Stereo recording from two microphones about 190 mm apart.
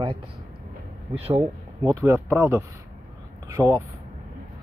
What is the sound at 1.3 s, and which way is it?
Speech, 25° right (ahead or behind).